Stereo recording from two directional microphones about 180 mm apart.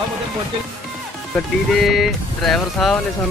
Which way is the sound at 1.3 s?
Centre (ahead or behind).